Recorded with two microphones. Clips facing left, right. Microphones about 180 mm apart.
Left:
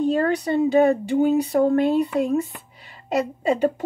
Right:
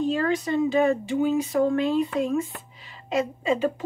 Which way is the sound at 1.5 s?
45° left (ahead or behind).